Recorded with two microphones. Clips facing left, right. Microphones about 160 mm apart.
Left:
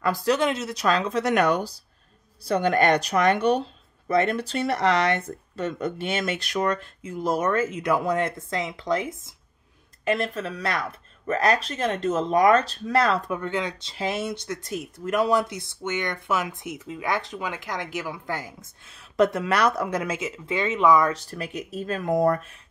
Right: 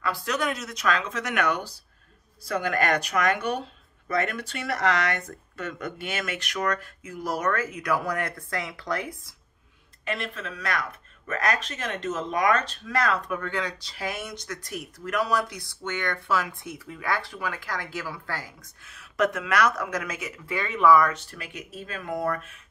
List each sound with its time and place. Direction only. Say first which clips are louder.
0.0 s speech: left 6 dB; 40° left (ahead or behind); by 9.3 s 20° left (ahead or behind)
10.0 s speech: left 7 dB; 40° left (ahead or behind); by 21.1 s 20° left (ahead or behind)
21.1 s speech: left 6 dB; 35° left (ahead or behind)